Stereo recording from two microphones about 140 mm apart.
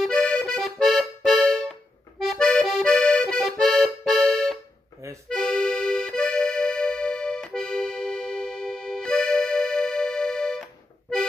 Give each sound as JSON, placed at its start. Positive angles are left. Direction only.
{"t": 0.0, "sound": "accordion", "side_deg": 5}